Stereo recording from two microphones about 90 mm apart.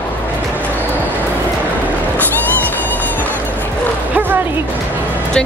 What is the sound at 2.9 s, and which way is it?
Music, 20° left (ahead or behind).